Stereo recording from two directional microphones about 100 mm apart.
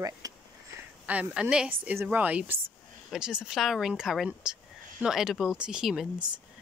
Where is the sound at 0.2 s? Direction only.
40° right (ahead or behind).